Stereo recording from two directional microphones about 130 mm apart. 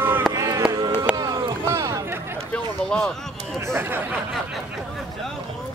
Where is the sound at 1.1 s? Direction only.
35° right (ahead or behind).